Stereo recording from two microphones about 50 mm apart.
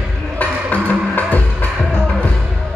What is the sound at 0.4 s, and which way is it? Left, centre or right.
Music, left.